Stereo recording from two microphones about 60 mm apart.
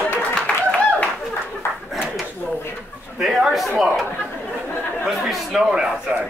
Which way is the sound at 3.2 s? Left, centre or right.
Centre.